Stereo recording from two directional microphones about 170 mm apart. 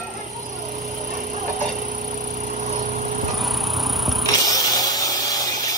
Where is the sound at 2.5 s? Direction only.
45° right (ahead or behind).